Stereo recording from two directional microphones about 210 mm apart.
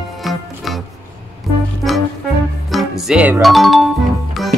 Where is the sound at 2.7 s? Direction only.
Centre (ahead or behind).